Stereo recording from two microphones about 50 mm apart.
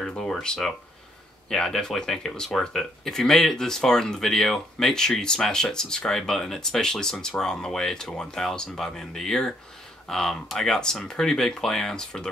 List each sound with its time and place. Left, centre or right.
0.3 s speech: centre